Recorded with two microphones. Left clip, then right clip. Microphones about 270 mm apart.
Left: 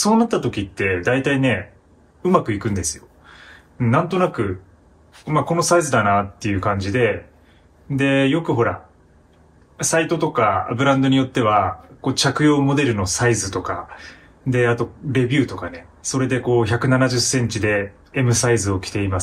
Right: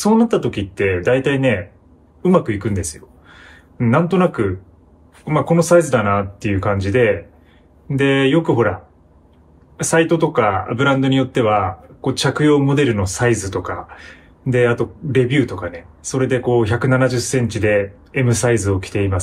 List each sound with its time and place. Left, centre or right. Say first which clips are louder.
0.0 s speech: right 2 dB; centre
9.8 s speech: right 4 dB; centre